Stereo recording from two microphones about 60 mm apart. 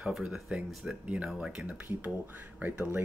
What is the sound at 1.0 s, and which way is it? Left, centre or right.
Speech, centre.